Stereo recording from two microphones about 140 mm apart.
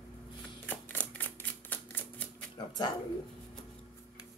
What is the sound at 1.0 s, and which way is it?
Typewriter, 10° left (ahead or behind).